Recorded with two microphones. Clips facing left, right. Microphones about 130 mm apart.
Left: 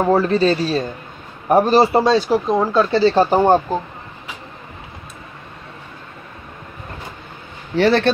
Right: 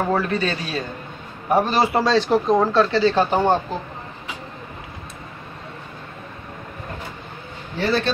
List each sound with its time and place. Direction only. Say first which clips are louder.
0.1 s speech: left 7 dB; 30° left (ahead or behind)
2.0 s speech: left 3 dB; 10° left (ahead or behind)
2.9 s speech: left 4 dB; 30° left (ahead or behind)
7.7 s a man's voice: left 7 dB; 75° left (ahead or behind)